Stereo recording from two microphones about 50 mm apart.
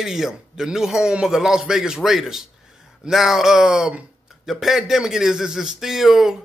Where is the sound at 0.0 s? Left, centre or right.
Centre.